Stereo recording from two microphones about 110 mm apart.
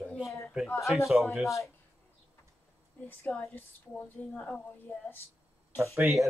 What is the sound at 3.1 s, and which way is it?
A woman's voice, 15° left (ahead or behind).